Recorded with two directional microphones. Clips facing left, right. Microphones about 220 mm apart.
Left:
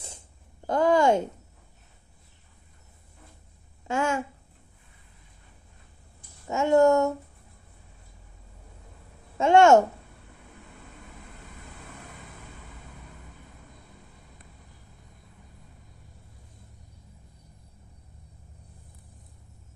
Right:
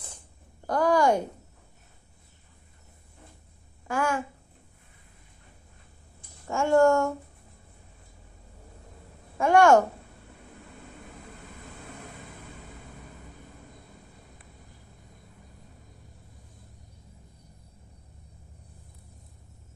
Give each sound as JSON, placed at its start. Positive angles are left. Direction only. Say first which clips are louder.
{"t": 0.7, "sound": "a woman's voice", "louder": "left 1 dB", "side_deg": 25}
{"t": 3.8, "sound": "a woman's voice", "louder": "left 1 dB", "side_deg": 25}
{"t": 6.4, "sound": "speech", "louder": "left 1 dB", "side_deg": 20}
{"t": 9.4, "sound": "speech", "louder": "left 2 dB", "side_deg": 25}